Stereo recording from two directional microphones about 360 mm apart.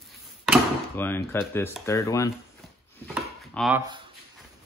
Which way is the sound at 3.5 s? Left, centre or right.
Centre.